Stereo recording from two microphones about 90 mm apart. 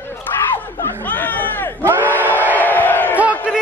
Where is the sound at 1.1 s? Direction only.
20° left (ahead or behind).